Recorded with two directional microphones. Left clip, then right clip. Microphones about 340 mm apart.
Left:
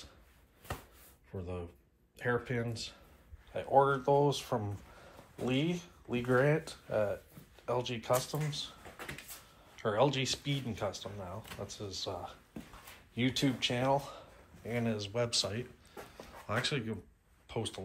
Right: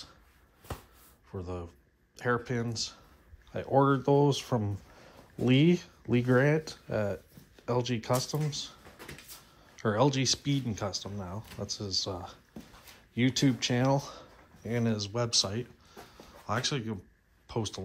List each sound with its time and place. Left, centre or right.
1.4 s speech: centre
3.6 s speech: right
9.8 s speech: centre